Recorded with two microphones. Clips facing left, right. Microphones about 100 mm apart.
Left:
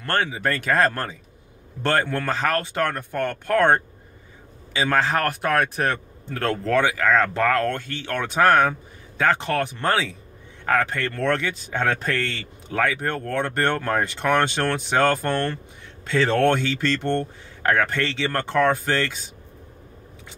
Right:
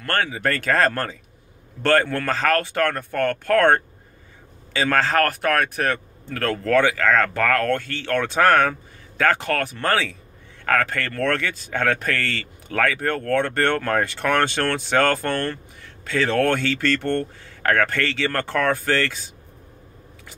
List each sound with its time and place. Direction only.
0.0 s a man's voice: 20° left (ahead or behind)